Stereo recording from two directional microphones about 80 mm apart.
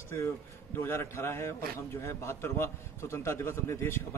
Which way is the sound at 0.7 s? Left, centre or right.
Left.